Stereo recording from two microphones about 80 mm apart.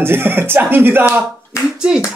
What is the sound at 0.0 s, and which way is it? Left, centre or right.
Speech, right.